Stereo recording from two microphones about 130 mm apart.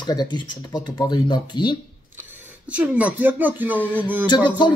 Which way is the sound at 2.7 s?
10° right (ahead or behind).